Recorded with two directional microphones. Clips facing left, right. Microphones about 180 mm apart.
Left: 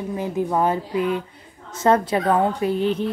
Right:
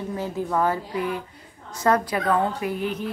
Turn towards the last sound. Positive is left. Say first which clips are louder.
# left 6 dB
turn(degrees=30)  # may be behind; listen again after turning